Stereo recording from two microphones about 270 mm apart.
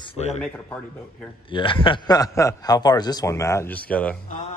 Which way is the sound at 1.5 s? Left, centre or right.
Centre.